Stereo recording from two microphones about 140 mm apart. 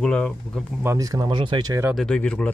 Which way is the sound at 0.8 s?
20° right (ahead or behind).